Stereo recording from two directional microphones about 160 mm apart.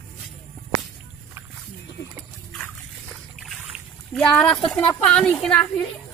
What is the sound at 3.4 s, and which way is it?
Speech, centre (ahead or behind).